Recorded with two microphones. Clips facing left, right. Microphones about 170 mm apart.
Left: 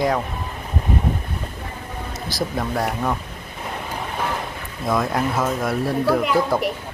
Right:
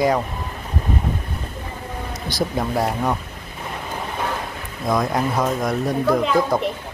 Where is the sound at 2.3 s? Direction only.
Centre (ahead or behind).